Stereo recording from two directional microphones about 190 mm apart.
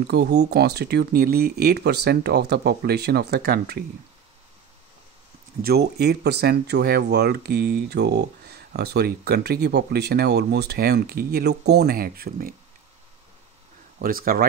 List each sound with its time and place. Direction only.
0.0 s speech: 60° right (ahead or behind)
5.6 s speech: 55° right (ahead or behind)
13.9 s speech: 50° right (ahead or behind)